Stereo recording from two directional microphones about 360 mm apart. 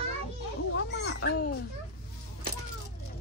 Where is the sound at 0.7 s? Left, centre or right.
Left.